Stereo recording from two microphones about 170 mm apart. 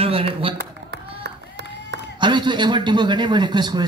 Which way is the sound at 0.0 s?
35° right (ahead or behind).